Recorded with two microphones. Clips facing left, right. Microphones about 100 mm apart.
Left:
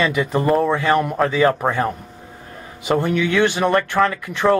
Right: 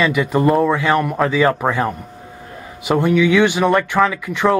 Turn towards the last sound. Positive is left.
turn(degrees=0)  # may be behind; listen again after turning